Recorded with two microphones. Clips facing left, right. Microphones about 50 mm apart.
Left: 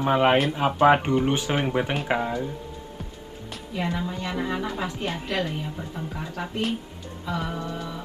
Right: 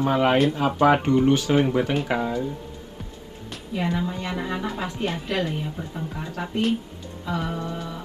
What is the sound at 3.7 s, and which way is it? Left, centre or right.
Speech, centre.